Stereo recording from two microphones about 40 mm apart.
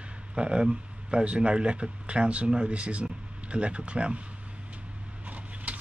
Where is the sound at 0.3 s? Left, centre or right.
Right.